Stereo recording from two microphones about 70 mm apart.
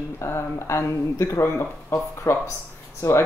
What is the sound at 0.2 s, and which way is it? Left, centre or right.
Speech, left.